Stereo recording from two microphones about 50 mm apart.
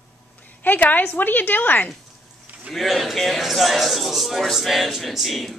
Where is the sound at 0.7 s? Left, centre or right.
Left.